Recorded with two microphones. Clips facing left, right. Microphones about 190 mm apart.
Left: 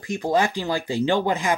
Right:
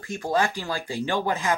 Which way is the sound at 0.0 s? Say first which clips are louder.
Left 3 dB; 20° left (ahead or behind).